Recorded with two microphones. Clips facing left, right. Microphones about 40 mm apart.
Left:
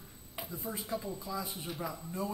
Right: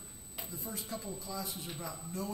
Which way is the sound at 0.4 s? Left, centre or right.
Centre.